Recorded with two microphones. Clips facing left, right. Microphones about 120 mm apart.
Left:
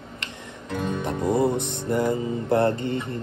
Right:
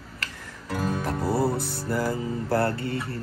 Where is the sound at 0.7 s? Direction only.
5° right (ahead or behind).